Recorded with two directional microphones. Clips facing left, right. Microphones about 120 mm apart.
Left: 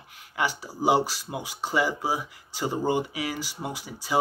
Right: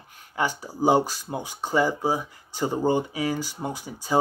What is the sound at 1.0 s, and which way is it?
Speech, 45° right (ahead or behind).